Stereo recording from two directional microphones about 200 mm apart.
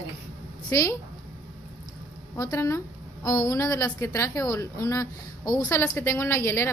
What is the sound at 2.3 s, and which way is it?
A woman's voice, 15° left (ahead or behind).